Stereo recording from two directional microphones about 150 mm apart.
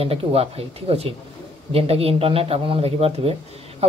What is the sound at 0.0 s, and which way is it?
Speech, 40° right (ahead or behind).